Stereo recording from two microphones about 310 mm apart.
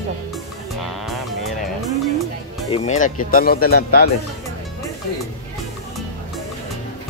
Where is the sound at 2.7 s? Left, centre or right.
Left.